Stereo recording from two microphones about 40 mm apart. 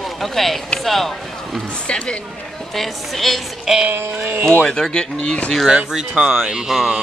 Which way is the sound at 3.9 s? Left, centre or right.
Right.